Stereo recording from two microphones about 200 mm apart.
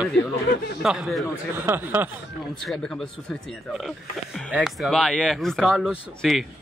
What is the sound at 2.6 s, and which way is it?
A man's voice, 5° left (ahead or behind).